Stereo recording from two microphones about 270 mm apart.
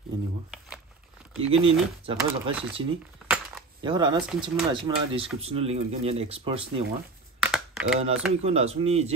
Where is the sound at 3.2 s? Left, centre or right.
Centre.